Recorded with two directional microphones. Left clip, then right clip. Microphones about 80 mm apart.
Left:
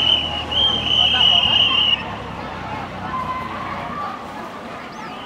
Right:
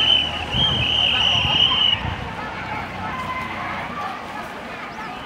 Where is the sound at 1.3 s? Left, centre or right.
Right.